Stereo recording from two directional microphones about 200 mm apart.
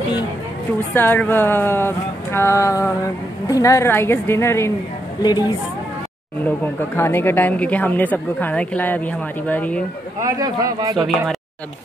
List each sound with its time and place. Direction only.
0.9 s a woman's voice: 10° left (ahead or behind)
6.6 s speech: 10° left (ahead or behind)
10.2 s speech: 20° right (ahead or behind)
11.0 s speech: centre (ahead or behind)